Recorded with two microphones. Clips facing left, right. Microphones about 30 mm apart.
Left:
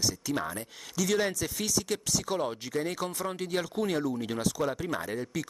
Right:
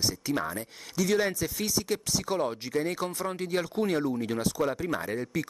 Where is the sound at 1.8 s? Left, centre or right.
Centre.